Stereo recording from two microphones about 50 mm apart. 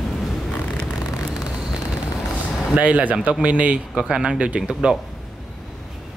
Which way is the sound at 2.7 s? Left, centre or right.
Right.